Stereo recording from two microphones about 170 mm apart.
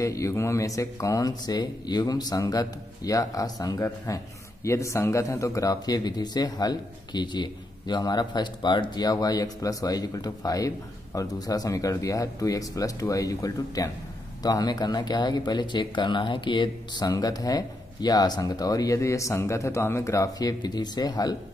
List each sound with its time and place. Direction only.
0.0 s speech: 20° left (ahead or behind)